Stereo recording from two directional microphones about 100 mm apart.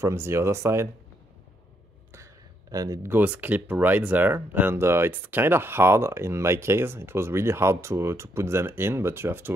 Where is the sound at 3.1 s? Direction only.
15° right (ahead or behind).